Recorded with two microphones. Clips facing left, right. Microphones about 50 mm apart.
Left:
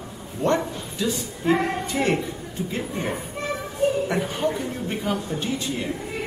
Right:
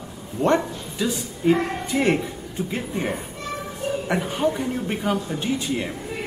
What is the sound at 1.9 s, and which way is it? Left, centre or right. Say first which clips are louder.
Speech: right 4 dB; centre.